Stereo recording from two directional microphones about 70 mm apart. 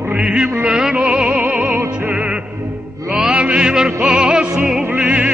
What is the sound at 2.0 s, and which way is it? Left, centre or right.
Music, centre.